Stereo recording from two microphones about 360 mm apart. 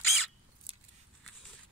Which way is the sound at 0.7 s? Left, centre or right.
Centre.